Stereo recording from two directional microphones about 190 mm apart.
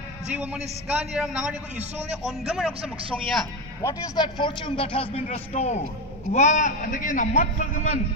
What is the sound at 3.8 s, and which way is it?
A man's voice, 25° left (ahead or behind).